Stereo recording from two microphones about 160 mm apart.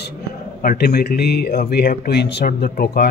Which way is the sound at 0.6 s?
65° left (ahead or behind).